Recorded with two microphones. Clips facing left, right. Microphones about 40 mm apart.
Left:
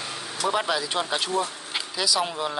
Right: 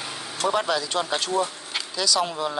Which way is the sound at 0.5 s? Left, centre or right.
Centre.